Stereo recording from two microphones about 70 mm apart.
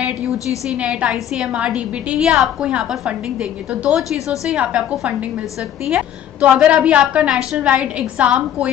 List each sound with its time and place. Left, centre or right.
0.7 s a woman's voice: centre
5.9 s a woman's voice: centre